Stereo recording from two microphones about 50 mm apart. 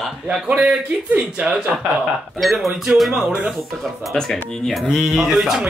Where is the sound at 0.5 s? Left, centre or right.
Right.